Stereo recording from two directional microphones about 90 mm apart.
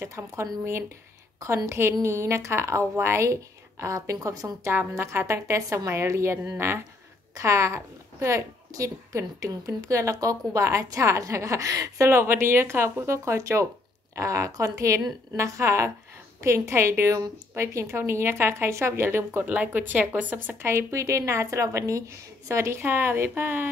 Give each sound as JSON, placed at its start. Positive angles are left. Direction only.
{"t": 0.0, "sound": "a woman's voice", "side_deg": -35}
{"t": 4.7, "sound": "a woman's voice", "side_deg": -30}
{"t": 12.1, "sound": "a woman's voice", "side_deg": -25}